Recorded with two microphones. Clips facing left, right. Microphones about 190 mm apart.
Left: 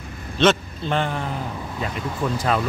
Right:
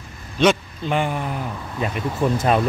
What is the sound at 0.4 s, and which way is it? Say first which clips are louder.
Speech: right 1 dB; 10° right (ahead or behind).